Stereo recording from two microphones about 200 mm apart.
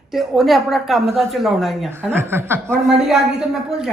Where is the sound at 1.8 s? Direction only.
10° right (ahead or behind).